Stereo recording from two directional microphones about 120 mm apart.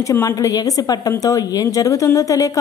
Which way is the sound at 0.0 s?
25° left (ahead or behind).